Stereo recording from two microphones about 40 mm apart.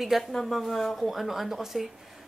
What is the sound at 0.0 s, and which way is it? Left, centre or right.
Speech, centre.